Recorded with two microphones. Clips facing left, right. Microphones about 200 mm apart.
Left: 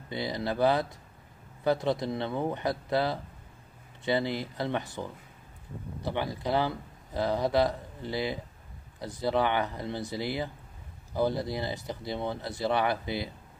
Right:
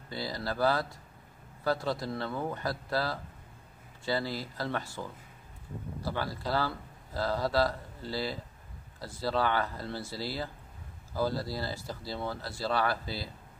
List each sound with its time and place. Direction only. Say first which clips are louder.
0.1 s speech: left 4 dB; 20° left (ahead or behind)